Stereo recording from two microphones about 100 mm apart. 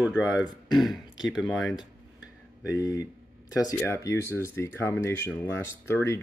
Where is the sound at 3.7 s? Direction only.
25° left (ahead or behind).